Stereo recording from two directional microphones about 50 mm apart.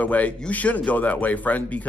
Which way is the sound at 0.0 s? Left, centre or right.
Left.